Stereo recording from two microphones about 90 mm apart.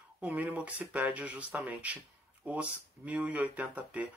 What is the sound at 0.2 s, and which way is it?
Speech, 20° right (ahead or behind).